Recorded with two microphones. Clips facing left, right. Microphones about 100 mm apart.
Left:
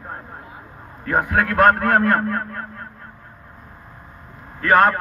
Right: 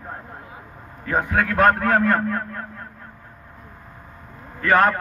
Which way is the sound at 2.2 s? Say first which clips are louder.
Left 1 dB; 45° left (ahead or behind).